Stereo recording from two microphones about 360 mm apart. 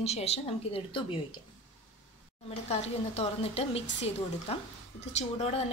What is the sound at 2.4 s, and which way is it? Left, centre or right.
A woman's voice, centre.